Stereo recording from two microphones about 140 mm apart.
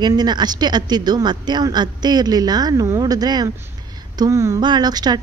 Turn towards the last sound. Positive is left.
turn(degrees=-30)  # may be behind; listen again after turning